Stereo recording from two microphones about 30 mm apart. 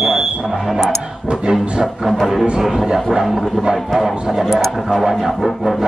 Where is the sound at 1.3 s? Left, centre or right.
Centre.